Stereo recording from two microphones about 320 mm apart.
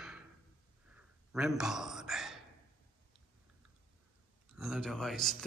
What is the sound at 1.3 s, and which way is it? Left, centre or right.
Speech, centre.